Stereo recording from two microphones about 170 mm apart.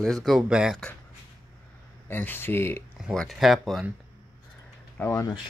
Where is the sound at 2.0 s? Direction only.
10° left (ahead or behind).